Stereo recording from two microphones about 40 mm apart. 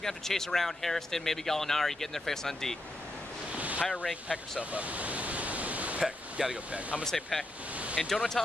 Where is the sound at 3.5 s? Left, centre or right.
Right.